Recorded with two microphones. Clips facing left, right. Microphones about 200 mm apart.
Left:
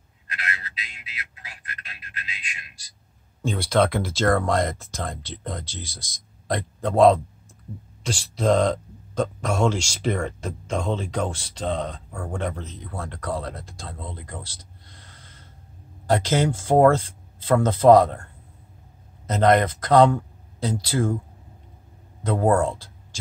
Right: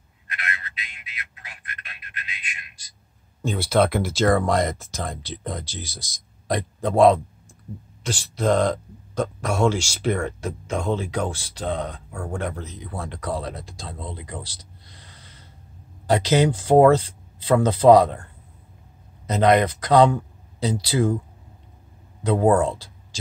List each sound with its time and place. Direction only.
0.4 s a sound: 35° left (ahead or behind)
3.4 s speech: 5° right (ahead or behind)
16.1 s speech: 15° right (ahead or behind)
22.2 s speech: 10° right (ahead or behind)